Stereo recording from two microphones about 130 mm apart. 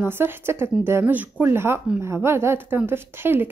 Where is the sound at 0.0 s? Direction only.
20° right (ahead or behind).